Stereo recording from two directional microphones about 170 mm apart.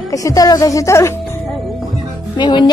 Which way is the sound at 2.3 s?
25° left (ahead or behind).